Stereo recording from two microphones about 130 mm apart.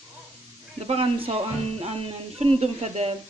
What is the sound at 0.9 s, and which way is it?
Speech, 50° right (ahead or behind).